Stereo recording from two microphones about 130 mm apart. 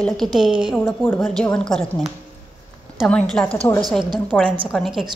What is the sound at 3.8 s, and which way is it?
Speech, 35° right (ahead or behind).